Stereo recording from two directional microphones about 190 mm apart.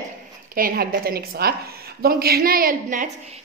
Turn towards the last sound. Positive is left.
turn(degrees=-45)  # may be behind; listen again after turning